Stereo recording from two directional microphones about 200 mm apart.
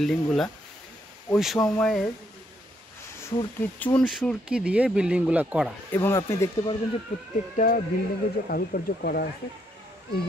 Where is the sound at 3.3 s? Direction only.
20° left (ahead or behind).